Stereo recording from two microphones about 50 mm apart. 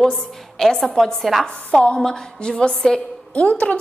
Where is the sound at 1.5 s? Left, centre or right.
Left.